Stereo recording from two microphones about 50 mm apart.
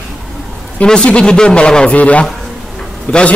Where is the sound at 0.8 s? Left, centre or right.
Centre.